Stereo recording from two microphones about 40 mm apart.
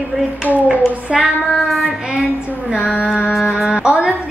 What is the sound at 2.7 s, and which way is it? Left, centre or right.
Female singing, right.